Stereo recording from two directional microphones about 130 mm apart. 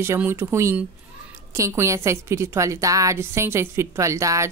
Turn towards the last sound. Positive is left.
turn(degrees=-25)  # may be behind; listen again after turning